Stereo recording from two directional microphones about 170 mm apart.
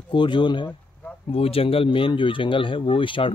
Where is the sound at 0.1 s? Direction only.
30° left (ahead or behind).